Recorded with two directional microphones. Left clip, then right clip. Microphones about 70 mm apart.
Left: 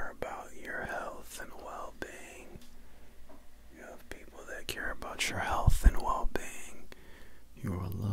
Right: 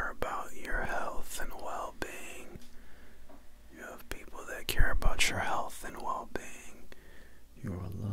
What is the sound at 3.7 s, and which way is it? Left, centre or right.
Whispering, right.